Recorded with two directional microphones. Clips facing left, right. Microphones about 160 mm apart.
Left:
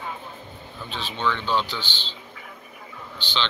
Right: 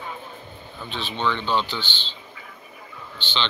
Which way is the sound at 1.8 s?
40° left (ahead or behind).